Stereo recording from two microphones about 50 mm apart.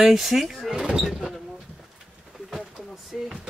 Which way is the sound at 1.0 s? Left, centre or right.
Centre.